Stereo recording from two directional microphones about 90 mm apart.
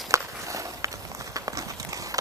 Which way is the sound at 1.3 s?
40° right (ahead or behind).